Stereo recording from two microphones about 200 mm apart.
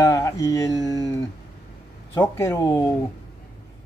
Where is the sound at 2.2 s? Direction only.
15° left (ahead or behind).